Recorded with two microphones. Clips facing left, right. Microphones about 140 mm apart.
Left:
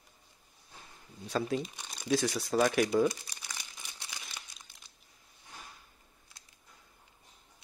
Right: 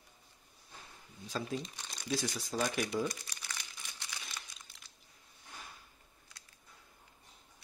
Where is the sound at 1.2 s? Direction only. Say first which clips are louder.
Left 6 dB; 65° left (ahead or behind).